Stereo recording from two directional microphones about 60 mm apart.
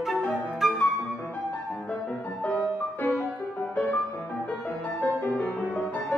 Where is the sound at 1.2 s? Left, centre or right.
Left.